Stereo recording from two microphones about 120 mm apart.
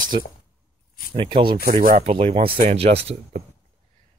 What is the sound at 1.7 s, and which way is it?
Speech, 60° right (ahead or behind).